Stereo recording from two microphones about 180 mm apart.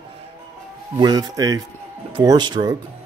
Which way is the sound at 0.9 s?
20° right (ahead or behind).